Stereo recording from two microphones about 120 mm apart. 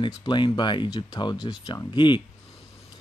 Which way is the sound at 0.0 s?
35° left (ahead or behind).